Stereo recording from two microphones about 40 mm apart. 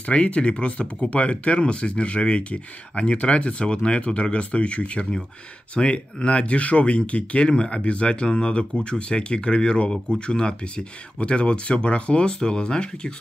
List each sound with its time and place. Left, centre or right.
0.0 s speech: left